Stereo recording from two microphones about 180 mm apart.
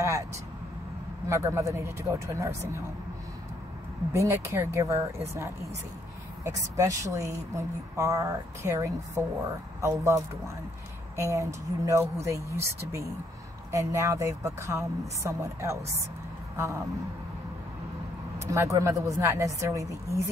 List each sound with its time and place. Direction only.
0.0 s vehicle: 15° right (ahead or behind)
1.3 s a woman's voice: 15° right (ahead or behind)
4.1 s a woman's voice: 15° right (ahead or behind)
11.1 s a woman's voice: 15° right (ahead or behind)
18.5 s a woman's voice: 15° right (ahead or behind)